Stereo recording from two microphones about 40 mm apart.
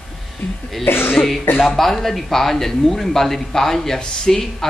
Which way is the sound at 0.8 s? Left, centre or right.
Left.